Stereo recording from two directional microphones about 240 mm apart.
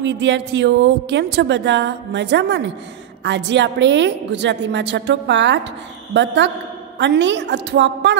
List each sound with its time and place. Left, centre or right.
0.0 s a woman's voice: right